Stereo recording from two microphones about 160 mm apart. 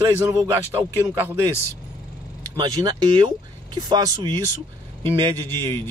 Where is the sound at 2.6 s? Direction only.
25° right (ahead or behind).